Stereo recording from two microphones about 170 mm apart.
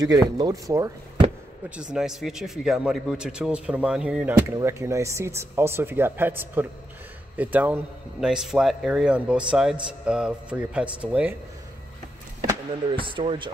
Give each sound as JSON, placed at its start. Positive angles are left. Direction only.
{"t": 0.0, "sound": "speech", "side_deg": -20}
{"t": 1.8, "sound": "a man's voice", "side_deg": -5}
{"t": 12.9, "sound": "speech", "side_deg": -30}